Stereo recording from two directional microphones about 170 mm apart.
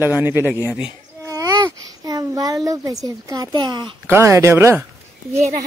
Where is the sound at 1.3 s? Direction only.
20° right (ahead or behind).